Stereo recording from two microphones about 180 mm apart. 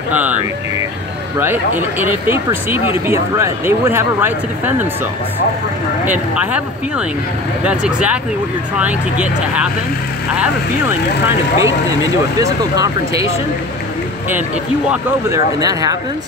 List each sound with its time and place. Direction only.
0.1 s speech: 10° right (ahead or behind)
1.4 s speech: 10° right (ahead or behind)
6.3 s speech: 5° right (ahead or behind)
14.9 s speech: 20° right (ahead or behind)